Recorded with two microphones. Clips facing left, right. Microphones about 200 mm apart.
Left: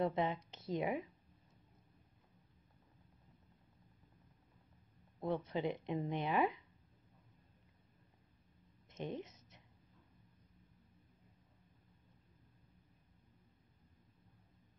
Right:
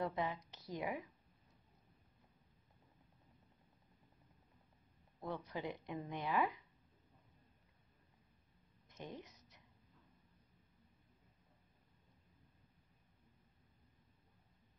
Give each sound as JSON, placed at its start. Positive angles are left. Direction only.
{"t": 0.0, "sound": "speech", "side_deg": 25}
{"t": 5.2, "sound": "speech", "side_deg": 20}
{"t": 8.8, "sound": "a sound", "side_deg": 20}